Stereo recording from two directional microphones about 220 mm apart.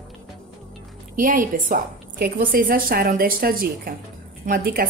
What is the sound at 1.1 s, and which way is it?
A woman's voice, 35° right (ahead or behind).